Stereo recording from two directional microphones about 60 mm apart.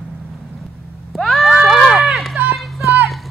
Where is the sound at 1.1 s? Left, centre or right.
Centre.